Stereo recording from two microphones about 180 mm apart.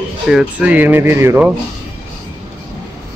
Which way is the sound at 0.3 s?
5° right (ahead or behind).